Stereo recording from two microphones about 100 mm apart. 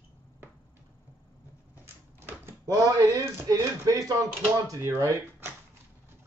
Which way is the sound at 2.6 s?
35° right (ahead or behind).